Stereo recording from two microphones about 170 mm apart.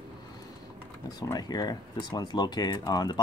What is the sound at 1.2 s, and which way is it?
Speech, 20° left (ahead or behind).